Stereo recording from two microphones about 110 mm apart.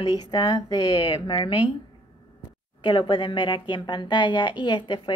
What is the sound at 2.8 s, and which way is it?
A woman's voice, 50° left (ahead or behind).